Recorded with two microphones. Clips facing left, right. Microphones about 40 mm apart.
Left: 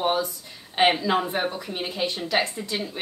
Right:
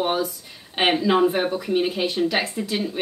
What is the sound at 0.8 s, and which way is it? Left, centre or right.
Speech, centre.